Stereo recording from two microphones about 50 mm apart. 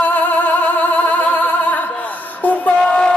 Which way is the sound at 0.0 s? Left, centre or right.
Left.